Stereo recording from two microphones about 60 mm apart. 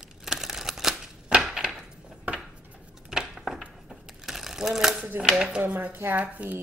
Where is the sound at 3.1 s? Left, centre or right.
Centre.